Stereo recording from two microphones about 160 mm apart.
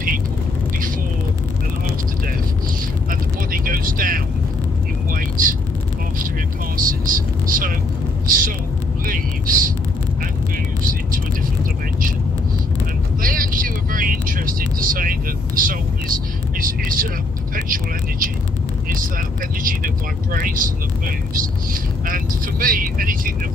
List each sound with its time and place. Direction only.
3.1 s vehicle: 60° right (ahead or behind)
6.8 s vehicle: 60° right (ahead or behind)
10.8 s vehicle: 60° right (ahead or behind)
13.2 s vehicle: 60° right (ahead or behind)
20.3 s vehicle: 60° right (ahead or behind)
22.0 s vehicle: 60° right (ahead or behind)